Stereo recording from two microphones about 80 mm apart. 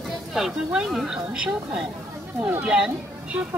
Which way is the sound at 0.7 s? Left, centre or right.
Centre.